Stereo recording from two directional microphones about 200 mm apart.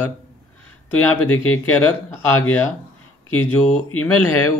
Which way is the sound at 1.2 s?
90° left.